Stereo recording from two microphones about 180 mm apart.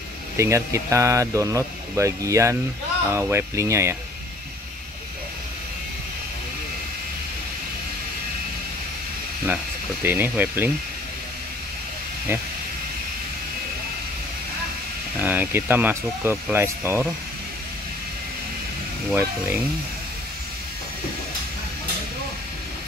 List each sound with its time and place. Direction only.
0.4 s speech: 15° right (ahead or behind)
10.0 s speech: 10° right (ahead or behind)
15.1 s speech: 10° right (ahead or behind)
19.1 s speech: 10° right (ahead or behind)